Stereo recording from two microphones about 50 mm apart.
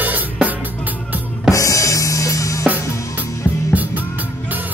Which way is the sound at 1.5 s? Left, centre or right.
Left.